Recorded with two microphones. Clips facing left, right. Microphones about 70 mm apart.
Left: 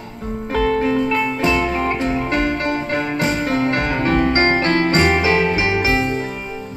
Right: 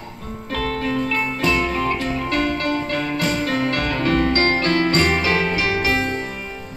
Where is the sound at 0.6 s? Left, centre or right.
Left.